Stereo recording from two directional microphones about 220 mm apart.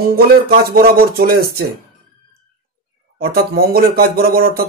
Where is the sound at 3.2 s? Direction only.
45° right (ahead or behind).